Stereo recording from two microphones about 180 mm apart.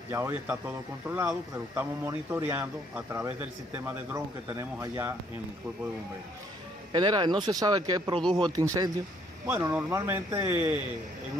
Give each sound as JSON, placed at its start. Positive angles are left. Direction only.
{"t": 0.1, "sound": "a man's voice", "side_deg": -15}
{"t": 6.9, "sound": "a man's voice", "side_deg": -25}